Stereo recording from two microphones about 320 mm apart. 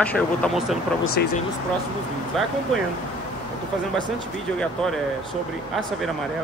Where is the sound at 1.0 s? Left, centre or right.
Left.